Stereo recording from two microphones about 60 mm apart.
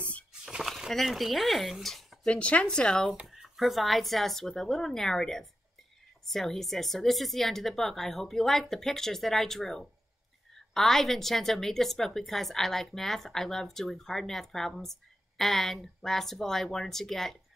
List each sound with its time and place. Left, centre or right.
0.3 s a sound: centre
2.2 s speech: centre
3.3 s a woman's voice: centre